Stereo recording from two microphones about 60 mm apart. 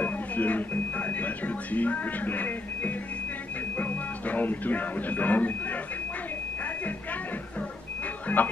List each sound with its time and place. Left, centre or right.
0.0 s music: left
3.7 s speech: left
8.3 s speech: left